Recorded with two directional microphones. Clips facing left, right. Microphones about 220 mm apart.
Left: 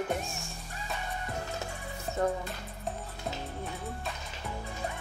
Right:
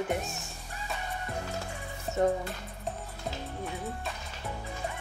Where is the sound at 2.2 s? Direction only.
20° right (ahead or behind).